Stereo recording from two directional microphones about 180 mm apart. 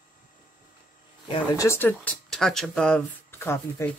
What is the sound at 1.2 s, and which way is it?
Speech, 25° left (ahead or behind).